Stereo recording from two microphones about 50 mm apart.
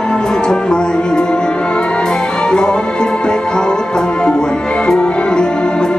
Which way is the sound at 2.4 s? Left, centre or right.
Centre.